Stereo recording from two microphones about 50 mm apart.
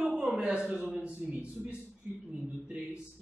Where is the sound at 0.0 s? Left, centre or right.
Centre.